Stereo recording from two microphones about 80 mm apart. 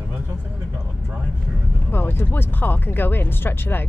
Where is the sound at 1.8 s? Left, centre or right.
Left.